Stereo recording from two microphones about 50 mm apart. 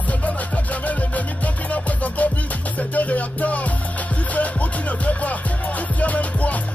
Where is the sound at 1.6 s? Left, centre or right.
Left.